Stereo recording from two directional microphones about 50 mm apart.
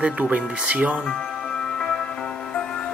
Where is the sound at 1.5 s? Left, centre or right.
Centre.